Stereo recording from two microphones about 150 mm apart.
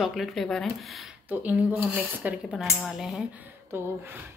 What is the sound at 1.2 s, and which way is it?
Speech, 10° right (ahead or behind).